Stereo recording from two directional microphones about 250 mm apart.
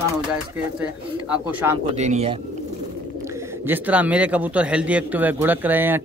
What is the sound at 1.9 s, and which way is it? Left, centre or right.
Speech, right.